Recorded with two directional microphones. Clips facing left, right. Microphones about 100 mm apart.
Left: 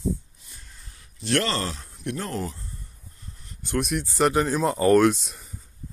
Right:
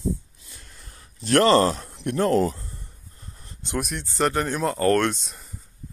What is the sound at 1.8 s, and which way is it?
Speech, 60° right (ahead or behind).